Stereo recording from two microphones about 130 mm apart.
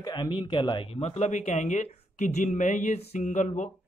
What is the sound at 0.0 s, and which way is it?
A man's voice, 30° left (ahead or behind).